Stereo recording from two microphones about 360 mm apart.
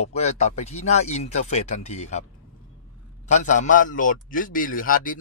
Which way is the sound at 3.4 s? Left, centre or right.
Left.